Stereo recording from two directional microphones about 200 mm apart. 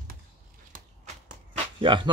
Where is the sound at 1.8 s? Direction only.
25° right (ahead or behind).